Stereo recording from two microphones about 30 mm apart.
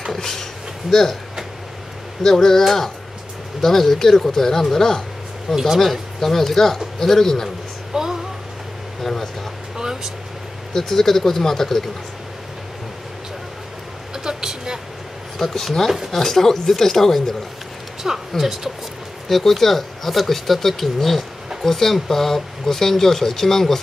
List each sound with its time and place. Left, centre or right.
0.1 s a sound: centre
2.2 s speech: centre
5.5 s speech: centre
5.8 s speech: centre
7.9 s a sound: centre
9.0 s speech: centre
9.8 s vehicle: centre
10.7 s speech: centre
14.1 s a sound: centre
15.3 s speech: centre
18.0 s speech: centre
19.2 s speech: centre